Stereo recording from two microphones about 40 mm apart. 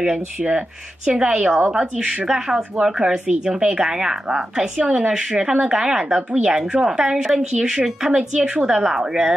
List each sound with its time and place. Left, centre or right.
0.5 s speech: centre
2.2 s speech: centre
4.8 s speech: right
5.4 s speech: centre
6.1 s speech: right
6.5 s speech: centre
8.2 s speech: right
8.7 s speech: centre